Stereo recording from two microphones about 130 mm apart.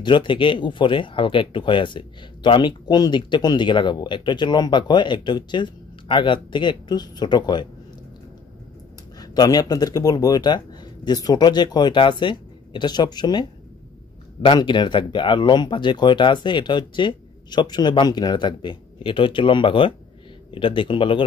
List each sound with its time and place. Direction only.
0.0 s speech: 40° left (ahead or behind)
9.2 s speech: 30° left (ahead or behind)